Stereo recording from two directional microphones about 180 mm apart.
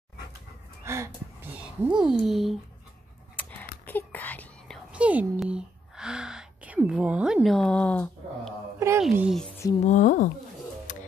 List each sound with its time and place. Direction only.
0.8 s a sound: 15° right (ahead or behind)
3.3 s whispering: 10° left (ahead or behind)
4.9 s whispering: 10° right (ahead or behind)
8.7 s a sound: 15° right (ahead or behind)
9.1 s speech: 5° right (ahead or behind)
9.8 s speech: 45° left (ahead or behind)